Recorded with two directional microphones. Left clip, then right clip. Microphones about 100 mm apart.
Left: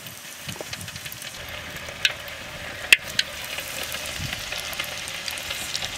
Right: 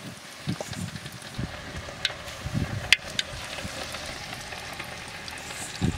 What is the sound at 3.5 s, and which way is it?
Frying, 15° left (ahead or behind).